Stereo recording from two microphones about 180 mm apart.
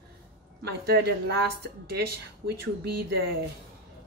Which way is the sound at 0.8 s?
60° right (ahead or behind).